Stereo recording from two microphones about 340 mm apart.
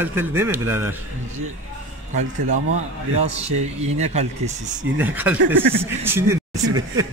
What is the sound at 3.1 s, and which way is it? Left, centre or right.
Speech, centre.